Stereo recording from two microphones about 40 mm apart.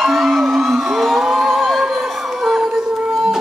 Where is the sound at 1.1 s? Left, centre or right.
Centre.